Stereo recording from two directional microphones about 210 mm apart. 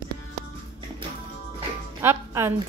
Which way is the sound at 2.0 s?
10° right (ahead or behind).